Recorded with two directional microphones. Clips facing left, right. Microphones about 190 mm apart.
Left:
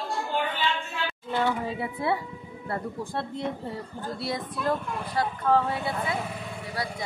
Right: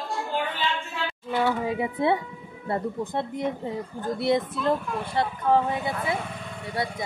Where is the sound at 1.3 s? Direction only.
15° right (ahead or behind).